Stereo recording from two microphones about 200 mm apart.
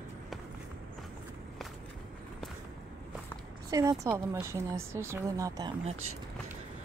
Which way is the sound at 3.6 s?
15° right (ahead or behind).